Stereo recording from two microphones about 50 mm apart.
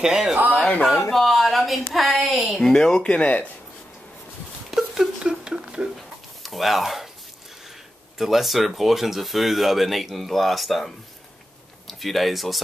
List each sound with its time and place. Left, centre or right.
0.0 s speech: centre
1.1 s speech: centre
2.7 s speech: centre
4.6 s a sound: centre
5.9 s a sound: centre
8.2 s speech: centre
11.9 s speech: centre